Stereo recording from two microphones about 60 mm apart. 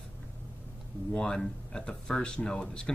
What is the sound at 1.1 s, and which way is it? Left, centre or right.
Speech, centre.